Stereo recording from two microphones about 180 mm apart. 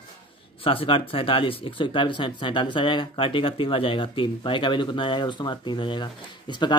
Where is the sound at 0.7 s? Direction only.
30° left (ahead or behind).